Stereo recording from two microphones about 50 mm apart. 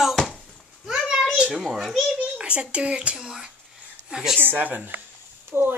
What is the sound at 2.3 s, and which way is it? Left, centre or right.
Speech, right.